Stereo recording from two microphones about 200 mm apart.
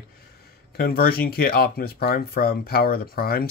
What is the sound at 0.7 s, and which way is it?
Speech, 50° left (ahead or behind).